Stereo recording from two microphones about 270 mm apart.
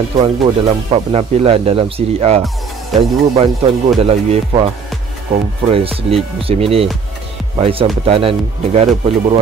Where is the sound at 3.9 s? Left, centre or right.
Right.